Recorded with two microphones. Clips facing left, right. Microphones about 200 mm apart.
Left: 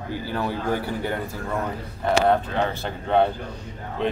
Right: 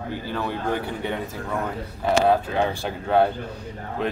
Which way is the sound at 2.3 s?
10° right (ahead or behind).